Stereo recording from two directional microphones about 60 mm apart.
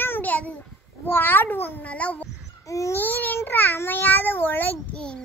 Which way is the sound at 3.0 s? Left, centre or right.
Left.